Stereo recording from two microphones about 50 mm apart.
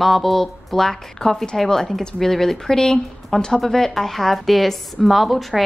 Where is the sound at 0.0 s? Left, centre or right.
Centre.